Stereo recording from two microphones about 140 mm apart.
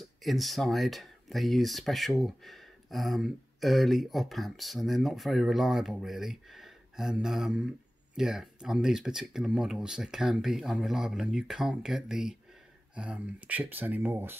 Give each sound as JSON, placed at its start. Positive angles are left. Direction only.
{"t": 0.2, "sound": "speech", "side_deg": 0}